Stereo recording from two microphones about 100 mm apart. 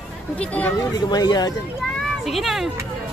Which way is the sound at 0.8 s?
45° left (ahead or behind).